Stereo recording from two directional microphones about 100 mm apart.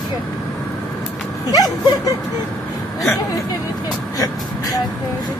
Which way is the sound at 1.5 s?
40° left (ahead or behind).